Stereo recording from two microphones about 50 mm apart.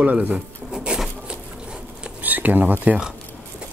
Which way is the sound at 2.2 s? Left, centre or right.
Right.